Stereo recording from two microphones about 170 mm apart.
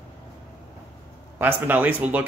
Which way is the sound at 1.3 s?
10° right (ahead or behind).